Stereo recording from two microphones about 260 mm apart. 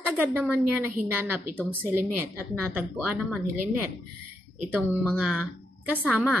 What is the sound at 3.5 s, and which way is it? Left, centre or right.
Speech, right.